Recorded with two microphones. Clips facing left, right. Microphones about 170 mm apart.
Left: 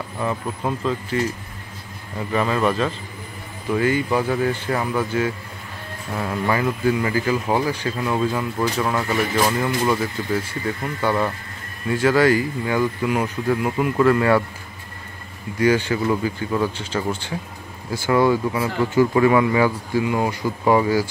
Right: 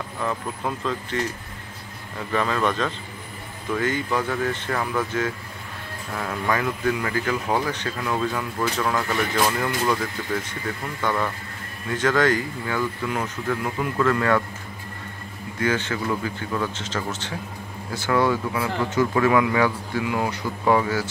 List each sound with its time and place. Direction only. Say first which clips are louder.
0.2 s speech: left 3 dB; 10° left (ahead or behind)
2.3 s speech: left 3 dB; 5° left (ahead or behind)
15.6 s speech: left 6 dB; 10° left (ahead or behind)